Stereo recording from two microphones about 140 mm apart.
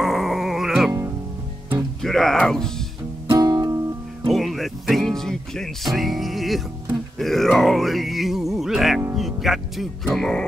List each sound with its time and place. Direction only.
0.0 s music: centre (ahead or behind)
2.0 s music: 5° left (ahead or behind)
3.3 s music: 25° right (ahead or behind)
4.3 s music: centre (ahead or behind)
9.1 s speech: centre (ahead or behind)